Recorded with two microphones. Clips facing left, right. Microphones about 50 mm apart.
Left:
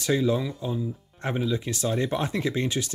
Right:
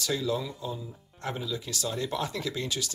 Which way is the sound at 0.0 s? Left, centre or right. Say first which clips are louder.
Left 6 dB; left.